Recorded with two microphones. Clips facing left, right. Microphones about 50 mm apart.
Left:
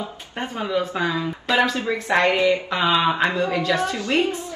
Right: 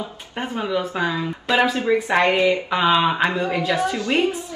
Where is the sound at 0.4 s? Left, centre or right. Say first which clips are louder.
Right 1 dB; centre.